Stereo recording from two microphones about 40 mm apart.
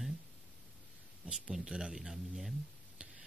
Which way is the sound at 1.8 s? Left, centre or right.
Centre.